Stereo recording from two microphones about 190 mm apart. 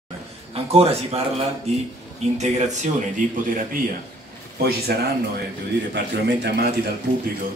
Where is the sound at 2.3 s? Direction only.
40° right (ahead or behind).